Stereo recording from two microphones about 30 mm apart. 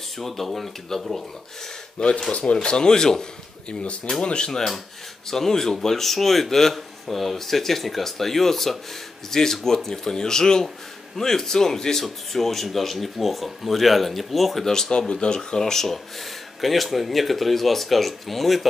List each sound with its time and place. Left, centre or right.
0.2 s speech: centre
2.0 s speech: left
2.3 s speech: left
2.6 s speech: left
4.2 s speech: left
5.3 s speech: centre
14.6 s speech: centre
14.9 s speech: left
15.6 s speech: centre
16.6 s speech: centre